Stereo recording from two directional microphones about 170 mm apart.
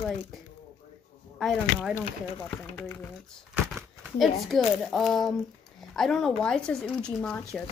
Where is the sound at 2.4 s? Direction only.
15° left (ahead or behind).